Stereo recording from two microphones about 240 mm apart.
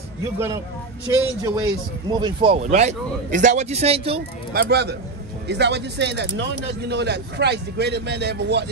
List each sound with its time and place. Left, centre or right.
1.0 s speech: centre
4.6 s speech: right